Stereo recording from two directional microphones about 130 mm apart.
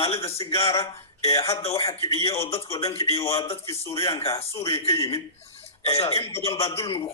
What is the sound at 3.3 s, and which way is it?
Speech, 50° left (ahead or behind).